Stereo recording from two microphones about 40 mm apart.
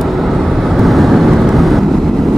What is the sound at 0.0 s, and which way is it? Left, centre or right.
Vehicle, centre.